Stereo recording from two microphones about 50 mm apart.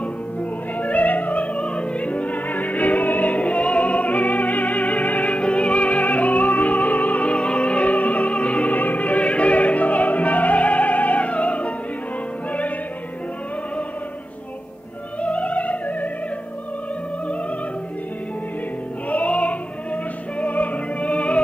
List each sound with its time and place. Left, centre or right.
0.0 s music: left
15.2 s music: left
19.0 s opera: left